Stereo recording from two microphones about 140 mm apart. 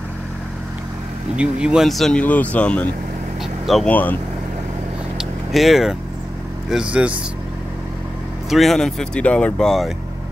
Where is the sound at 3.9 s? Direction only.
10° left (ahead or behind).